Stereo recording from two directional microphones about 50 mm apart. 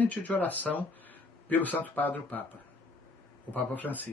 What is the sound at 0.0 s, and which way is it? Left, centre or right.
Speech, left.